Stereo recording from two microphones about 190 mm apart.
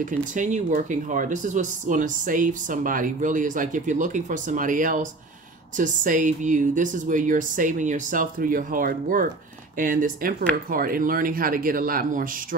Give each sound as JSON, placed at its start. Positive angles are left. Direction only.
{"t": 0.0, "sound": "speech", "side_deg": -40}